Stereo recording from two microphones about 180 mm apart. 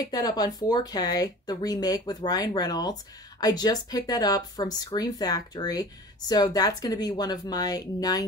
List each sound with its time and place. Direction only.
0.0 s speech: 20° left (ahead or behind)